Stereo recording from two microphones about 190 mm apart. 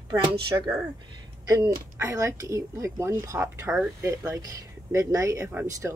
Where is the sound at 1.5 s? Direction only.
15° right (ahead or behind).